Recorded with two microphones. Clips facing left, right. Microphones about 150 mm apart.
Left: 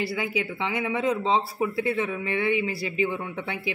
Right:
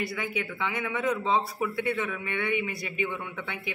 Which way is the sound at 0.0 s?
25° left (ahead or behind).